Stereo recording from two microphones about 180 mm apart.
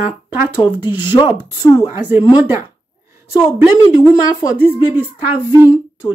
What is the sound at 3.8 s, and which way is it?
Speech, 15° left (ahead or behind).